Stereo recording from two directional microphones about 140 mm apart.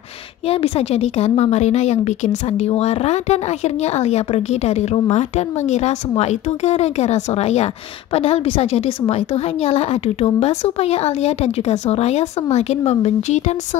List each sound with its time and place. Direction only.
0.5 s speech: 45° left (ahead or behind)